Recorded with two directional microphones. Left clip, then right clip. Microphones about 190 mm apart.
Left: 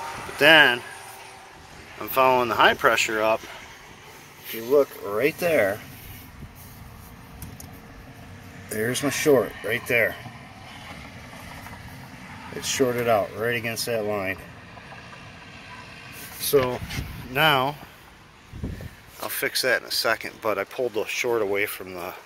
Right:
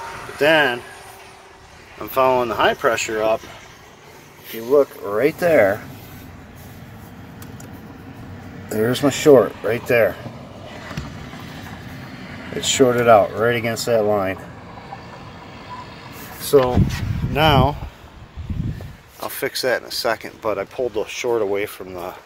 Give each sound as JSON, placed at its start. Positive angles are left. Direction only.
{"t": 0.4, "sound": "speech", "side_deg": 5}
{"t": 2.0, "sound": "speech", "side_deg": -5}
{"t": 4.6, "sound": "speech", "side_deg": 5}
{"t": 8.6, "sound": "speech", "side_deg": -5}
{"t": 9.0, "sound": "speech", "side_deg": 10}
{"t": 12.5, "sound": "speech", "side_deg": 0}
{"t": 16.5, "sound": "speech", "side_deg": 20}
{"t": 17.3, "sound": "speech", "side_deg": -15}
{"t": 19.3, "sound": "speech", "side_deg": -20}
{"t": 20.5, "sound": "speech", "side_deg": 0}